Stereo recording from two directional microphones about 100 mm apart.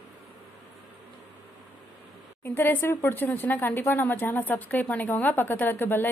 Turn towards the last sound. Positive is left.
turn(degrees=20)  # may be behind; listen again after turning